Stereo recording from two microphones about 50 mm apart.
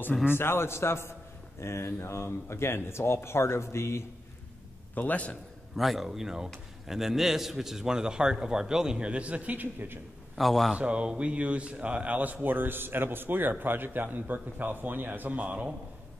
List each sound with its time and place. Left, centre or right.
0.3 s speech: left
4.9 s a man's voice: left
5.8 s a man's voice: centre; by 9.9 s right
10.3 s a man's voice: centre
10.8 s speech: right